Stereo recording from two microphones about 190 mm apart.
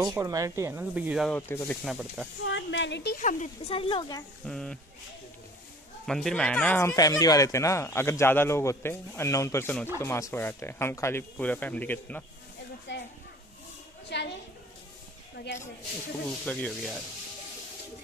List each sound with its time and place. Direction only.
0.0 s speech: 15° right (ahead or behind)
1.3 s speech: 10° left (ahead or behind)
1.9 s speech: centre (ahead or behind)
2.4 s speech: 70° left (ahead or behind)
3.2 s speech: 40° left (ahead or behind)
4.5 s speech: 5° left (ahead or behind)
6.0 s speech: centre (ahead or behind)
14.0 s a woman's voice: 65° left (ahead or behind)
16.3 s speech: 5° left (ahead or behind)